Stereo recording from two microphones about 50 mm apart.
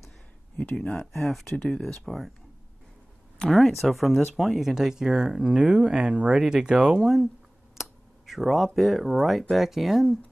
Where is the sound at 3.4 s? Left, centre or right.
Centre.